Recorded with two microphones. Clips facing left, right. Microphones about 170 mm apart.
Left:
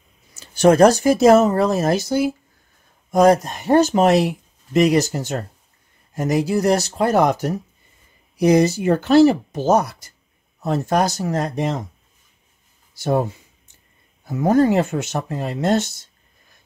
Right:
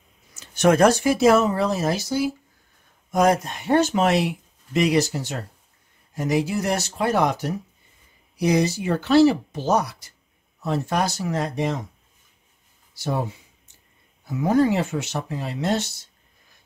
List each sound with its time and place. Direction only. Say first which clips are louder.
0.3 s speech: left 4 dB; 30° left (ahead or behind); by 2.3 s 55° left (ahead or behind)
3.1 s speech: left 5 dB; 35° left (ahead or behind)
12.9 s speech: left 6 dB; 50° left (ahead or behind)